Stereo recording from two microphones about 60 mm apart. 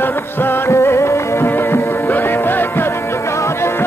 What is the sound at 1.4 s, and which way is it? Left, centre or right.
Music, left.